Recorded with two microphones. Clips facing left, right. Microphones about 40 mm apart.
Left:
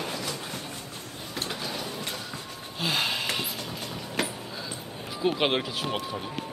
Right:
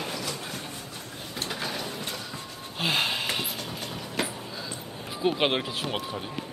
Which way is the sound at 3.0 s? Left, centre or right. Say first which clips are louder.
Even; centre.